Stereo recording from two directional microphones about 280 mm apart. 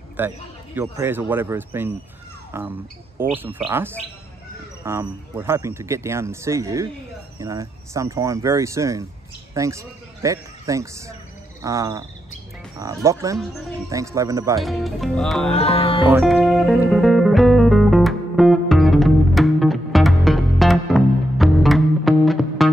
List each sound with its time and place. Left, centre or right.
0.2 s speech: centre
14.6 s music: centre
15.5 s speech: left
16.1 s music: centre